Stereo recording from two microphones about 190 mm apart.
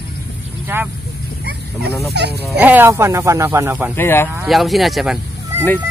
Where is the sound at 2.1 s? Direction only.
60° right (ahead or behind).